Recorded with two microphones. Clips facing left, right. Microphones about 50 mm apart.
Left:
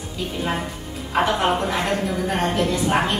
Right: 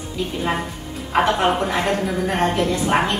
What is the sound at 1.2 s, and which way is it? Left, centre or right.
Speech, centre.